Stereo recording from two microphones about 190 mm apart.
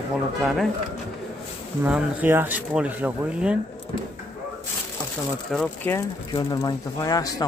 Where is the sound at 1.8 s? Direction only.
10° right (ahead or behind).